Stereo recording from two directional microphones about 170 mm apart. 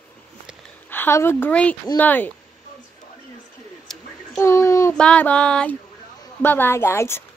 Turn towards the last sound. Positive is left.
turn(degrees=15)  # may be behind; listen again after turning